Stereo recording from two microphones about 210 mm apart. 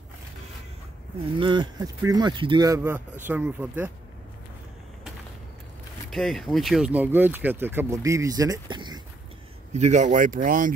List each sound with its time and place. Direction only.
1.4 s speech: 20° right (ahead or behind)
6.0 s speech: centre (ahead or behind); by 9.0 s 20° right (ahead or behind)
9.7 s speech: 35° right (ahead or behind)